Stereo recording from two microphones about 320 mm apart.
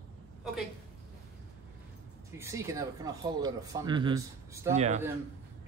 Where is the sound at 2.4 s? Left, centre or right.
Centre.